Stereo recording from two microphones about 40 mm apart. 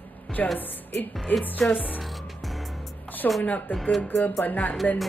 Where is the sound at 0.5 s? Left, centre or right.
Left.